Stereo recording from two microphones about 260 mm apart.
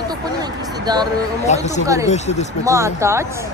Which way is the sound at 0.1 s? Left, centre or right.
Centre.